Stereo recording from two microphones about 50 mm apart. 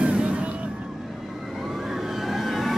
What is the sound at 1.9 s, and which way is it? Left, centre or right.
Vehicle, centre.